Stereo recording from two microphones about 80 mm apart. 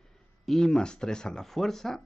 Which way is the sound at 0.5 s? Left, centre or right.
Centre.